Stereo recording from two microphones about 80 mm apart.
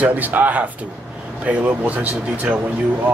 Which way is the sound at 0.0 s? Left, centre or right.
Right.